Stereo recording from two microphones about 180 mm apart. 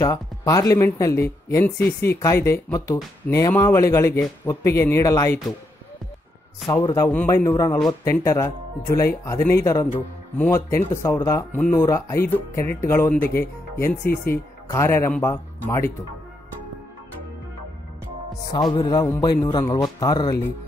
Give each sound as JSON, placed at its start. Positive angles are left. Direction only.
{"t": 0.0, "sound": "speech", "side_deg": 20}
{"t": 6.7, "sound": "speech", "side_deg": 20}
{"t": 18.5, "sound": "a man's voice", "side_deg": 25}